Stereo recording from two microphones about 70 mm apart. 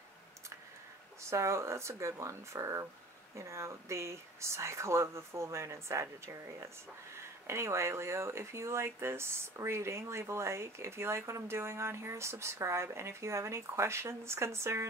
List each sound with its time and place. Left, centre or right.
1.2 s speech: right